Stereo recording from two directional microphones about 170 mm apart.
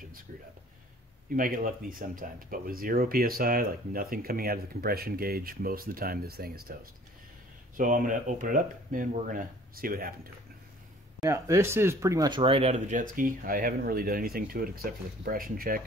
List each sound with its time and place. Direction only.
1.3 s speech: 55° right (ahead or behind)
7.7 s speech: 50° right (ahead or behind)
11.2 s speech: 15° right (ahead or behind); by 15.8 s 55° right (ahead or behind)